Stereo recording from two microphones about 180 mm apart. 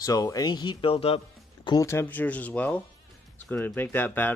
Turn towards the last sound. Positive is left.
turn(degrees=10)  # may be behind; listen again after turning